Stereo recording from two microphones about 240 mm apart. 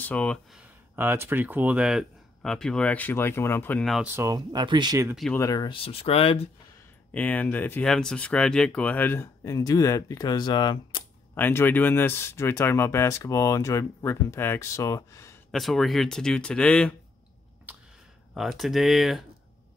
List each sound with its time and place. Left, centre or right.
0.0 s speech: centre
5.1 s speech: centre
5.4 s speech: centre
7.2 s speech: centre
15.5 s speech: centre
17.7 s a sound: centre
18.3 s speech: centre